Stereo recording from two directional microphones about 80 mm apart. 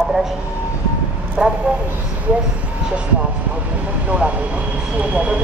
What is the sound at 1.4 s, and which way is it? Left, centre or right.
Speech, centre.